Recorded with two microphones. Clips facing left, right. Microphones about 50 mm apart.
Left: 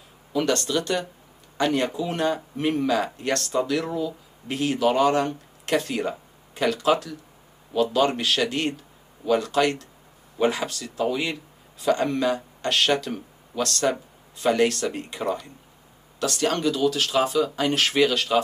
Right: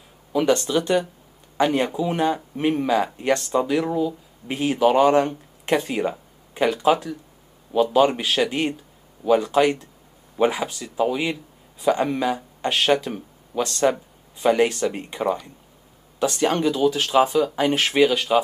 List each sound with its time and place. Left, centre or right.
0.3 s speech: centre